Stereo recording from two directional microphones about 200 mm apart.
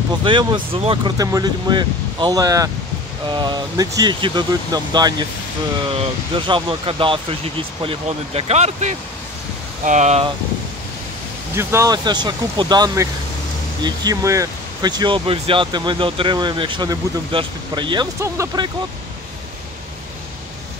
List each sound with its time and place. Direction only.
0.2 s speech: 25° right (ahead or behind)
11.5 s speech: 15° right (ahead or behind)